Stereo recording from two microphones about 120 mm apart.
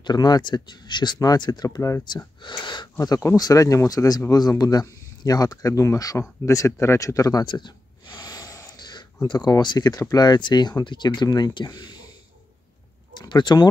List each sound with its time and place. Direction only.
0.0 s speech: 35° left (ahead or behind)
2.4 s speech: 40° left (ahead or behind)
7.4 s speech: 40° left (ahead or behind)
13.1 s speech: 35° left (ahead or behind)